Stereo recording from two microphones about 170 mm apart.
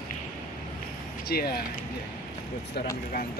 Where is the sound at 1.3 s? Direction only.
65° left (ahead or behind).